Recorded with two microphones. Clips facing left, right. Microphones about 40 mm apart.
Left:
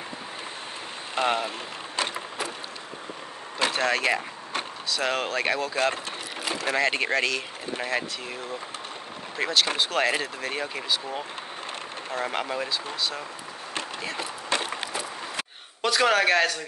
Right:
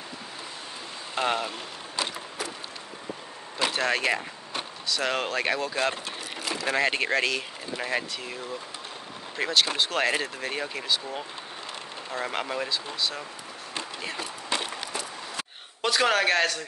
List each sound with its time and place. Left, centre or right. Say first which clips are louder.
1.1 s speech: left 2 dB; centre
2.1 s a sound: left 3 dB; left
3.7 s speech: left 1 dB; centre
6.0 s vehicle: left 1 dB; left
6.7 s speech: even; centre
9.4 s speech: even; centre
14.9 s a sound: left 2 dB; left
15.8 s speech: left 2 dB; centre